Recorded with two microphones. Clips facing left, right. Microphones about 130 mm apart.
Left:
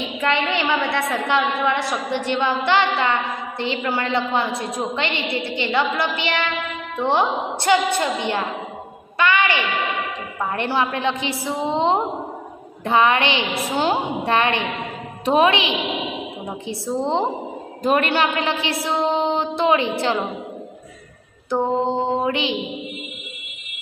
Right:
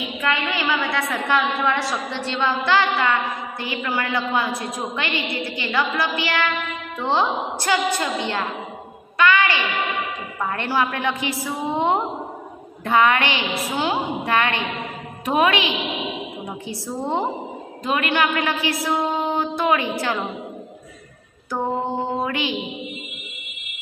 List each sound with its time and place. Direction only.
0.2 s a woman's voice: 25° left (ahead or behind)
17.0 s a woman's voice: 25° left (ahead or behind)
17.8 s a woman's voice: 35° left (ahead or behind)
21.7 s a woman's voice: 20° left (ahead or behind)